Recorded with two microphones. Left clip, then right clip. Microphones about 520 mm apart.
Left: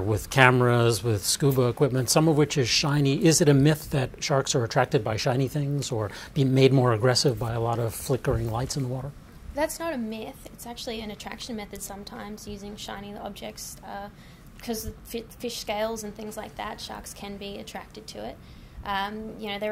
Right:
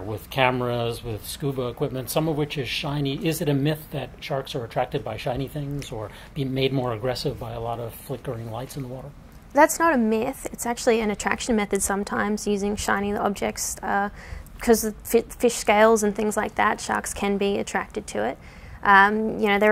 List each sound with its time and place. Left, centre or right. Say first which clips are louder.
0.1 s speech: left 3 dB; left
9.5 s a woman's voice: right 11 dB; right
10.2 s a woman's voice: right 12 dB; right
17.7 s a woman's voice: right 12 dB; right